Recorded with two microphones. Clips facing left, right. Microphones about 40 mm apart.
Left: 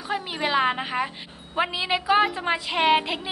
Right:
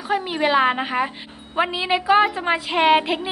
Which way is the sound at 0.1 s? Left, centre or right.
Centre.